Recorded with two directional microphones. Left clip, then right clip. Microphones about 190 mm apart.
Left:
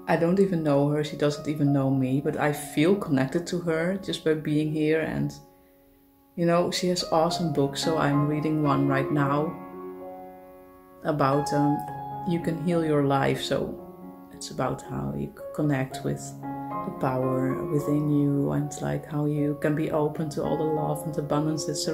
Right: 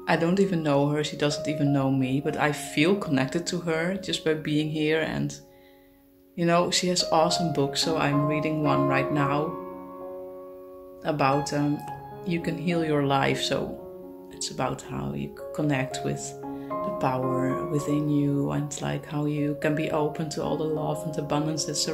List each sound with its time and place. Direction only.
0.0 s speech: 5° left (ahead or behind)
6.3 s speech: 5° left (ahead or behind)
11.1 s speech: 15° left (ahead or behind)
17.2 s speech: centre (ahead or behind)
17.7 s speech: 10° left (ahead or behind)